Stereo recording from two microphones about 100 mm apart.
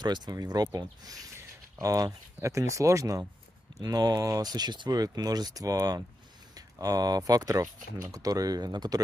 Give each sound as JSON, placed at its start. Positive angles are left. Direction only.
{"t": 0.0, "sound": "speech", "side_deg": -45}